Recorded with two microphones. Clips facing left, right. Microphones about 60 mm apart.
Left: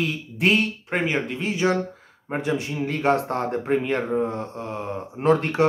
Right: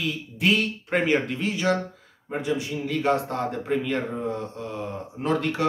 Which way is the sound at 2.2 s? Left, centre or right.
Left.